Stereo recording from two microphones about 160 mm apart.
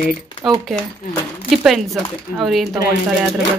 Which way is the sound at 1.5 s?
Centre (ahead or behind).